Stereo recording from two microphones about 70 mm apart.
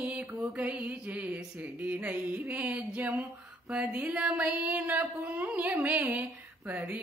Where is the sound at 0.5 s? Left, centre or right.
Centre.